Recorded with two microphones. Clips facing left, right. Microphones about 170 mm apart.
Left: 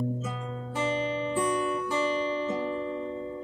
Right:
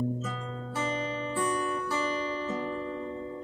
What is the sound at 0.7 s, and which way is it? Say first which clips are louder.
Guitar: left 4 dB; 25° left (ahead or behind).